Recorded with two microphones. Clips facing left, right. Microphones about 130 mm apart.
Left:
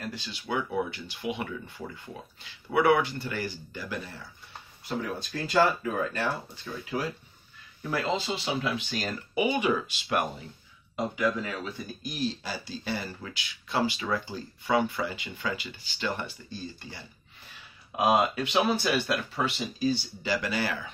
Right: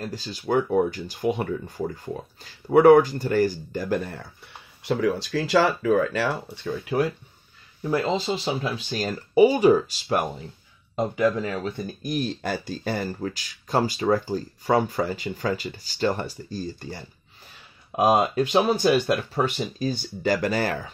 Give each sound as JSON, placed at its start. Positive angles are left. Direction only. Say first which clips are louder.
{"t": 0.1, "sound": "speech", "louder": "right 10 dB", "side_deg": -40}
{"t": 4.8, "sound": "speech", "louder": "right 9 dB", "side_deg": -90}
{"t": 6.5, "sound": "speech", "louder": "right 7 dB", "side_deg": -65}
{"t": 7.8, "sound": "speech", "louder": "right 5 dB", "side_deg": -35}
{"t": 12.0, "sound": "speech", "louder": "right 5 dB", "side_deg": -55}